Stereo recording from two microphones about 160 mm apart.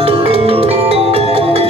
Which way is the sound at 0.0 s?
35° right (ahead or behind).